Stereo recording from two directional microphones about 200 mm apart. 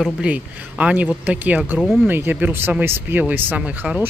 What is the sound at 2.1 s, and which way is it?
Speech, 10° right (ahead or behind).